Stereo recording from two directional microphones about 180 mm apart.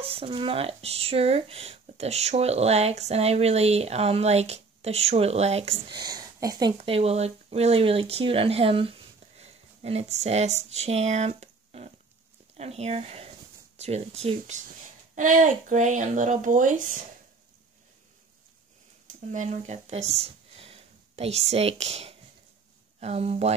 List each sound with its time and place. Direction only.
0.0 s speech: 30° right (ahead or behind)
6.8 s speech: 35° right (ahead or behind)
15.1 s speech: 45° right (ahead or behind)
19.3 s speech: 40° right (ahead or behind)